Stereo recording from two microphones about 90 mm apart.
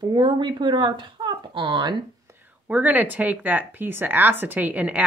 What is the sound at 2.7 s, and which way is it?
Speech, 15° right (ahead or behind).